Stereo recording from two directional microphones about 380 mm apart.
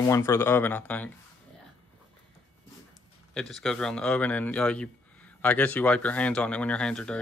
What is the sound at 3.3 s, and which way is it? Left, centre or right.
Speech, centre.